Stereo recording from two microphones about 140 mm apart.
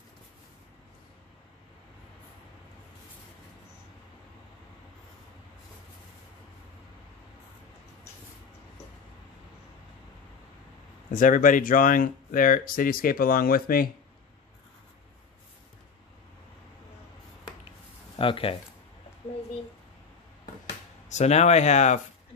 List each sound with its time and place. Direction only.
11.1 s speech: 70° left (ahead or behind); by 13.8 s 90° left
18.1 s speech: 40° left (ahead or behind)
21.1 s speech: 55° left (ahead or behind)